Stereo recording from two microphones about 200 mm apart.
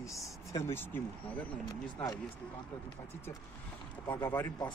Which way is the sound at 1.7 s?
15° left (ahead or behind).